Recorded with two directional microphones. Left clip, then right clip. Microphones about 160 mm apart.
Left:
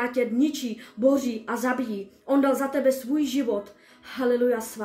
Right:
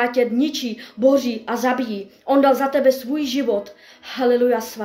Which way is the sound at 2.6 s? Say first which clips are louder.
Right 7 dB; 25° left (ahead or behind).